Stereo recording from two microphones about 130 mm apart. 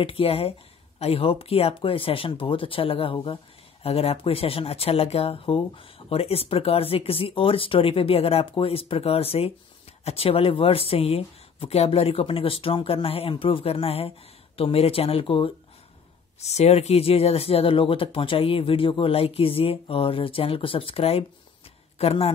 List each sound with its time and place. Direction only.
0.0 s speech: 45° left (ahead or behind)
16.4 s speech: 55° left (ahead or behind)